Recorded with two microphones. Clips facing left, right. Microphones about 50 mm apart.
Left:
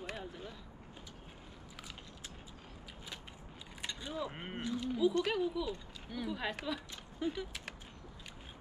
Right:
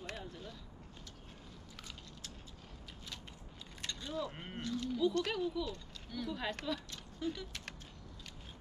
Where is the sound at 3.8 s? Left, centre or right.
Centre.